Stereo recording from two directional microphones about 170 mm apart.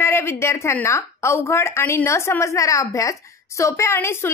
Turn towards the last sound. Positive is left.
turn(degrees=15)  # may be behind; listen again after turning